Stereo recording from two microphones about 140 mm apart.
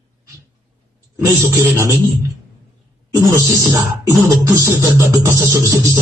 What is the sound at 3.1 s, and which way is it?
Music, 20° right (ahead or behind).